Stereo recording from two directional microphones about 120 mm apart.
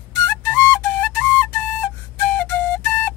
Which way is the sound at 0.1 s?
20° left (ahead or behind).